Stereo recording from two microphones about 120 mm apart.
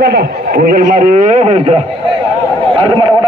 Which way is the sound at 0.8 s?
90° right.